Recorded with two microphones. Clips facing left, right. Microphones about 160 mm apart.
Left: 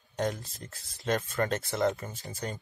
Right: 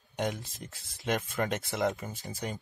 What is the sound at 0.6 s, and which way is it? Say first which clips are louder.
Speech: right 1 dB; 20° right (ahead or behind).